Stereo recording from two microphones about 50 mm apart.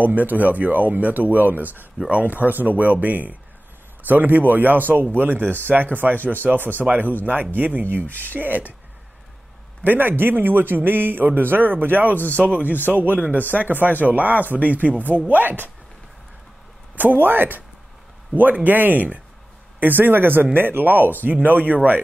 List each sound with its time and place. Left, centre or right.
0.0 s a man's voice: right
9.8 s a man's voice: right
16.9 s a man's voice: right